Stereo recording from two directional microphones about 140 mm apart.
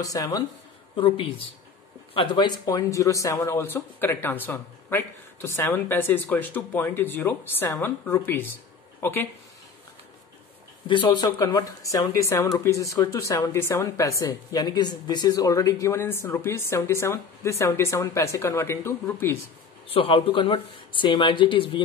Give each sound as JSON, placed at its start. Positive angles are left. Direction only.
{"t": 0.0, "sound": "speech", "side_deg": 25}
{"t": 0.9, "sound": "speech", "side_deg": 35}
{"t": 10.9, "sound": "speech", "side_deg": 35}
{"t": 19.9, "sound": "speech", "side_deg": 45}